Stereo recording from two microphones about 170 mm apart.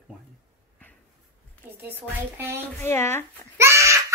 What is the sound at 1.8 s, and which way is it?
Speech, 10° right (ahead or behind).